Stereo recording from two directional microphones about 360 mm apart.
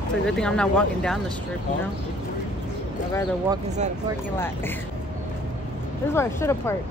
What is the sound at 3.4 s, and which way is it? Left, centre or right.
Speech, centre.